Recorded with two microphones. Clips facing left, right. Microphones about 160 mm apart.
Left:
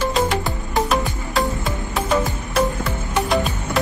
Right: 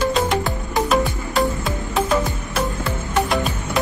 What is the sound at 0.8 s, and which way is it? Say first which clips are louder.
Music: right 2 dB; centre (ahead or behind).